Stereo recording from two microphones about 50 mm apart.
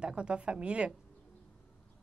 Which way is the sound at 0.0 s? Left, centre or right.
Centre.